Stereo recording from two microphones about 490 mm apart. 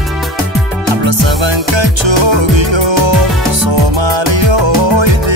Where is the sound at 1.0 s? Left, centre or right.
Right.